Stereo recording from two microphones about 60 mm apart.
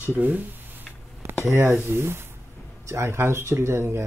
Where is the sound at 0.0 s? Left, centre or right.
Right.